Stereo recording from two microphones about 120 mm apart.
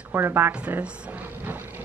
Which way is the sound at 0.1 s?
20° right (ahead or behind).